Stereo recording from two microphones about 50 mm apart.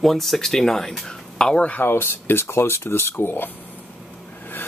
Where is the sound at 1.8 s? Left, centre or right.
Left.